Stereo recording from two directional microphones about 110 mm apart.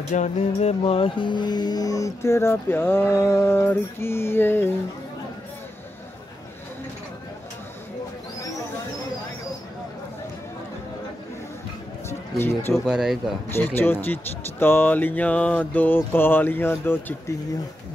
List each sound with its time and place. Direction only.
0.1 s music: 85° left; by 4.7 s 20° left (ahead or behind)
12.1 s run: 20° left (ahead or behind)
12.7 s speech: 5° right (ahead or behind)
13.5 s music: 20° left (ahead or behind)